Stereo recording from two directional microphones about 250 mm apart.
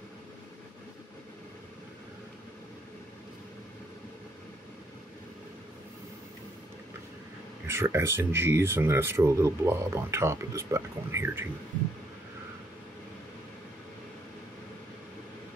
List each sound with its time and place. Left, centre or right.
7.6 s speech: centre